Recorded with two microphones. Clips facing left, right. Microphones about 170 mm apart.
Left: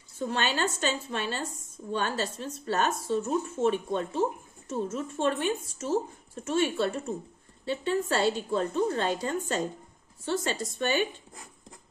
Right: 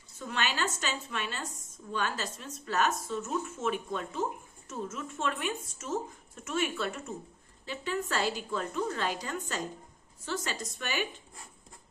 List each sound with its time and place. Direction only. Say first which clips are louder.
0.2 s a woman's voice: left 4 dB; 35° left (ahead or behind)